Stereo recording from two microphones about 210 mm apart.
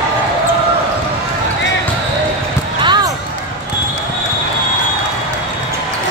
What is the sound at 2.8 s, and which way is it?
Basketball bounce, 20° right (ahead or behind).